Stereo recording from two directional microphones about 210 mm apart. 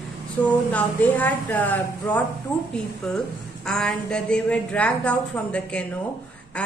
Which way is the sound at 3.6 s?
5° left (ahead or behind).